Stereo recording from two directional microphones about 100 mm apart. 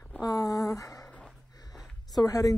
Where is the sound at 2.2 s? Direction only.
35° left (ahead or behind).